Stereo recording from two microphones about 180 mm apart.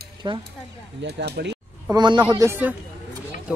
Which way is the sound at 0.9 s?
70° right (ahead or behind).